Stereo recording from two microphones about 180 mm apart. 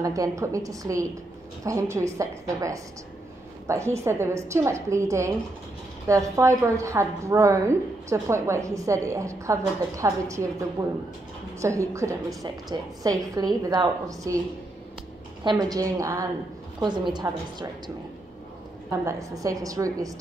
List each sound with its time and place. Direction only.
0.0 s a woman's voice: 20° right (ahead or behind)
11.6 s a woman's voice: 15° right (ahead or behind)
15.4 s a woman's voice: 20° right (ahead or behind)
19.0 s a woman's voice: 20° right (ahead or behind)